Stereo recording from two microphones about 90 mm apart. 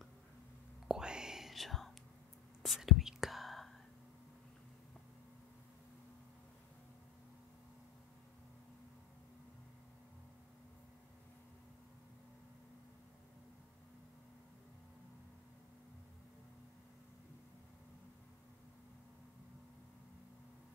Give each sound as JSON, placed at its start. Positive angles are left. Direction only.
{"t": 0.8, "sound": "whispering", "side_deg": -10}